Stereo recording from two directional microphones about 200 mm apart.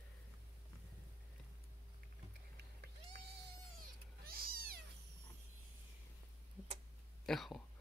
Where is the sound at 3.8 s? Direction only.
50° right (ahead or behind).